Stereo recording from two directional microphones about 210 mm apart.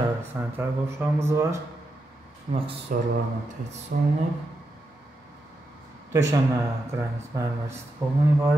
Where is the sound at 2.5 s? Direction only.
30° right (ahead or behind).